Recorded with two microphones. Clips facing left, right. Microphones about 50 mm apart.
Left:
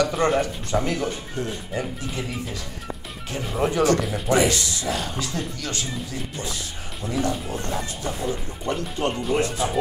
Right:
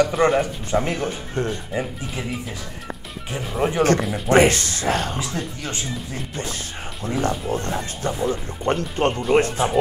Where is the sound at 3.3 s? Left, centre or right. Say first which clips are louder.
Right 1 dB; centre.